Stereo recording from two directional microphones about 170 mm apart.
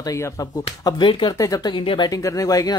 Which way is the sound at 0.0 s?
20° left (ahead or behind).